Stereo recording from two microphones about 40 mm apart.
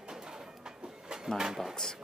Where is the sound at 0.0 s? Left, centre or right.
Centre.